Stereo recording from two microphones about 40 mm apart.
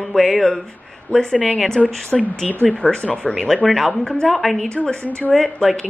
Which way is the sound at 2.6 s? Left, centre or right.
Left.